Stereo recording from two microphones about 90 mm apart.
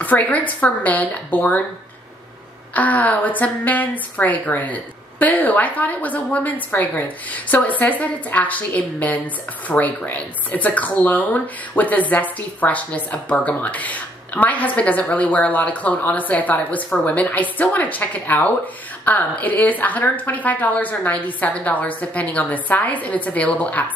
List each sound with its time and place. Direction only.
0.0 s speech: 20° left (ahead or behind)
2.7 s a woman's voice: 15° left (ahead or behind)